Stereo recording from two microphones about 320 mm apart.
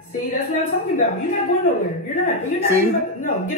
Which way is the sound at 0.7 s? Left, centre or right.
Left.